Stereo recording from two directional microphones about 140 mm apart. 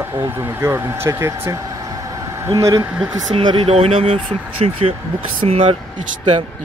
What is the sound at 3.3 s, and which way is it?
Speech, 45° right (ahead or behind).